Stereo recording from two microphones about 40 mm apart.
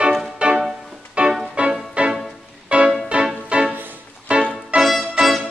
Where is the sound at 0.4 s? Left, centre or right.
Right.